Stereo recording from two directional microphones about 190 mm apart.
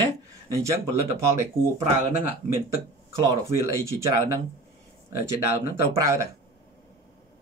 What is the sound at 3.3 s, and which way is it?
Speech, 15° right (ahead or behind).